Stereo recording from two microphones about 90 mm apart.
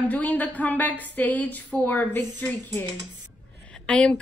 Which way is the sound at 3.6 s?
10° left (ahead or behind).